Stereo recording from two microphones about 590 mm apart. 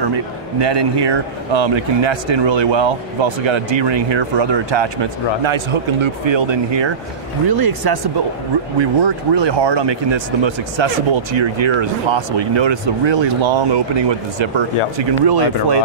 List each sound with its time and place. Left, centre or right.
0.0 s a man's voice: right